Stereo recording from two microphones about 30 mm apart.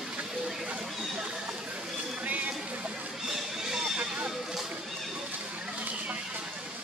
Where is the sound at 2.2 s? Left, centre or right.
Right.